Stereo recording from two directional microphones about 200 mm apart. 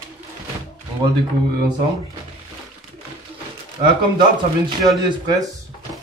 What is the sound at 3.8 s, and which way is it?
Speech, 35° right (ahead or behind).